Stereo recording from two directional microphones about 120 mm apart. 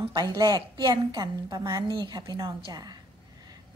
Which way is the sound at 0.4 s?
35° right (ahead or behind).